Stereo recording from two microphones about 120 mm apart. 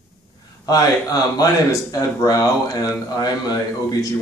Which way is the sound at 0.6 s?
30° left (ahead or behind).